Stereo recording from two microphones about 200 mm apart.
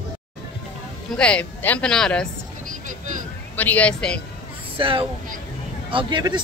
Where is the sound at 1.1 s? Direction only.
5° left (ahead or behind).